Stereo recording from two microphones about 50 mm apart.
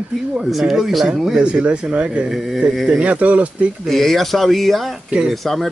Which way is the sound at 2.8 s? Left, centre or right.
Right.